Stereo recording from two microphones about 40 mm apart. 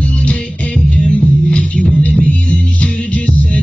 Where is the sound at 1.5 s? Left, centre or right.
Left.